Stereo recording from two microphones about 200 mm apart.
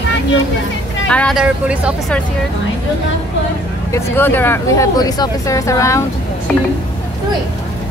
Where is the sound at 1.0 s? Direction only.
5° left (ahead or behind).